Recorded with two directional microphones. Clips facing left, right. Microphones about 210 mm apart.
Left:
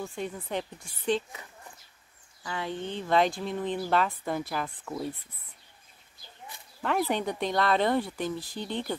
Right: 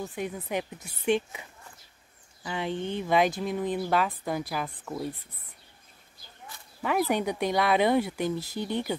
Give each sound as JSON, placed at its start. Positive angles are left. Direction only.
{"t": 0.0, "sound": "speech", "side_deg": -20}
{"t": 2.4, "sound": "speech", "side_deg": -20}
{"t": 6.8, "sound": "speech", "side_deg": -5}